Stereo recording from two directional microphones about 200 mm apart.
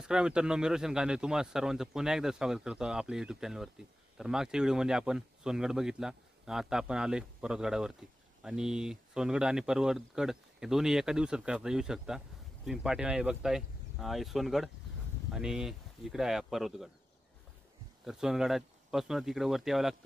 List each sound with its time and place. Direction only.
0.0 s speech: 5° right (ahead or behind)
18.0 s speech: centre (ahead or behind)